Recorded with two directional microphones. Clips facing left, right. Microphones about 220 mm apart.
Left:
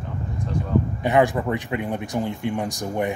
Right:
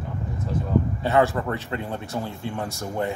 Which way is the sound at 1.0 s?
15° left (ahead or behind).